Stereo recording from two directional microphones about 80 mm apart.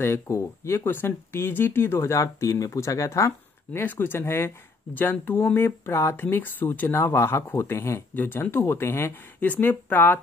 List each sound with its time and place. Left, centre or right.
0.0 s speech: left
3.8 s speech: left